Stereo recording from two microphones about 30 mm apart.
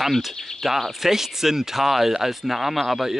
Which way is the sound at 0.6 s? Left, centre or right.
Centre.